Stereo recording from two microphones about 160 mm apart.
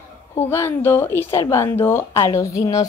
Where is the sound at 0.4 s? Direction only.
15° left (ahead or behind).